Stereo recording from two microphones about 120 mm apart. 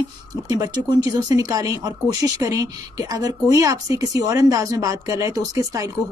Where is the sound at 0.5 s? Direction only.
30° right (ahead or behind).